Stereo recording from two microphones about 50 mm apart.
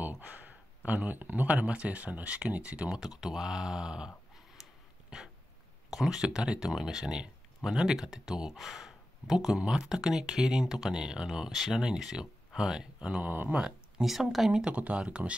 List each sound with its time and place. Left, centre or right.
0.8 s speech: right
2.9 s speech: centre
5.9 s speech: centre
11.5 s speech: centre
13.2 s a sound: right
13.6 s speech: centre